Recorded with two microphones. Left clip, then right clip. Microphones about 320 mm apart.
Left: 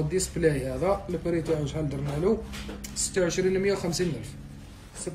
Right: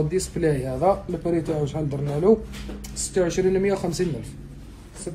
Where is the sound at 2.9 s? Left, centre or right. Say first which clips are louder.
Right 3 dB; right.